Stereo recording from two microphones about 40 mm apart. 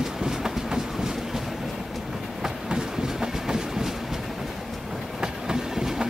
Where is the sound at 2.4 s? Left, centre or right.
Centre.